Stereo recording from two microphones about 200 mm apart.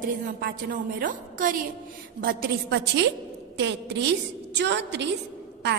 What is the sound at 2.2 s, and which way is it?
A woman's voice, 55° right (ahead or behind).